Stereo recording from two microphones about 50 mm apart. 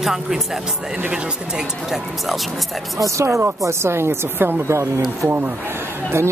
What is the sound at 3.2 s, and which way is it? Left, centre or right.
Speech, right.